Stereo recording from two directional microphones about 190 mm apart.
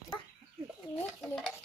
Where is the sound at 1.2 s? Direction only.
Centre (ahead or behind).